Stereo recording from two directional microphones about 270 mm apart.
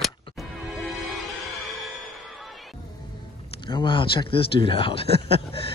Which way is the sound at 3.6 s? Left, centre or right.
Centre.